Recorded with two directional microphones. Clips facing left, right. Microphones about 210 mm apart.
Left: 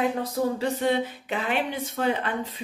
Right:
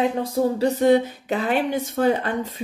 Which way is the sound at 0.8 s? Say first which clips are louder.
Right 8 dB; 40° right (ahead or behind).